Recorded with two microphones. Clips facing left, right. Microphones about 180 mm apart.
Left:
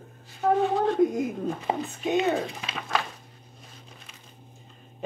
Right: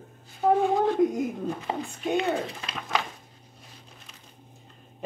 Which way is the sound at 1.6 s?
15° left (ahead or behind).